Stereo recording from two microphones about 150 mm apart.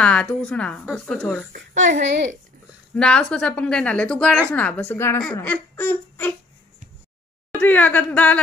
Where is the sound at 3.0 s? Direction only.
5° left (ahead or behind).